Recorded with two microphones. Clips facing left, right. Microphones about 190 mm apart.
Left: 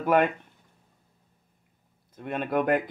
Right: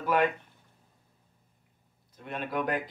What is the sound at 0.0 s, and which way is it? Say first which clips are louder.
Speech: left 4 dB; 55° left (ahead or behind).